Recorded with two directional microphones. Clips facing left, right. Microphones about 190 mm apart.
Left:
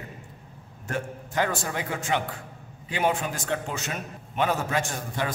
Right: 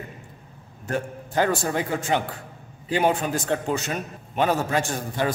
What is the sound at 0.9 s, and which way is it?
A man's voice, 35° right (ahead or behind).